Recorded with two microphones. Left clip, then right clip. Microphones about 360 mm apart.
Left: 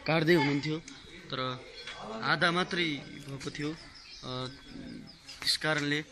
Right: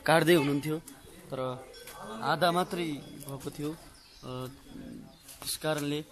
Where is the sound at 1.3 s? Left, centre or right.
Centre.